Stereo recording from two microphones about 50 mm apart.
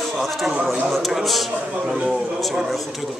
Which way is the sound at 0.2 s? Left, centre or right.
Centre.